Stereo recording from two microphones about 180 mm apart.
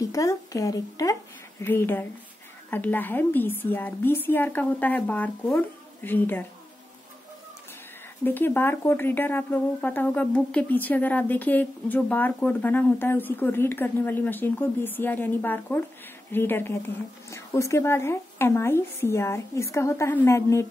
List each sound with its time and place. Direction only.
0.0 s speech: 15° left (ahead or behind)
8.2 s speech: 10° left (ahead or behind)